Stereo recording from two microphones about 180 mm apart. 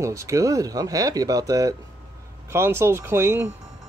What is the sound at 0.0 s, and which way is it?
Speech, 15° right (ahead or behind).